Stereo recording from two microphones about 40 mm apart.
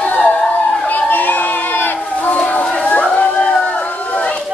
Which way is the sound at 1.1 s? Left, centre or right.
Left.